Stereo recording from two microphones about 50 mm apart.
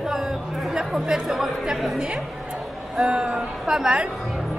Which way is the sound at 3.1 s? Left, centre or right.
Right.